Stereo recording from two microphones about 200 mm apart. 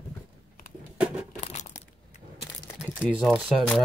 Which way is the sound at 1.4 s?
35° left (ahead or behind).